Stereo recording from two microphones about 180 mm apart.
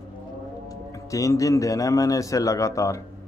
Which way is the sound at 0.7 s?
20° left (ahead or behind).